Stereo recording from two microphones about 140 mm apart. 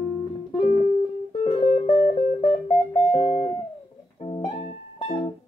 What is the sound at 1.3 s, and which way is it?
Music, 40° left (ahead or behind).